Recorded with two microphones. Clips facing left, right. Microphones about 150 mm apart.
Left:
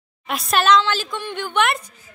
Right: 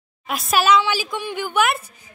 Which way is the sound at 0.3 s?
Centre (ahead or behind).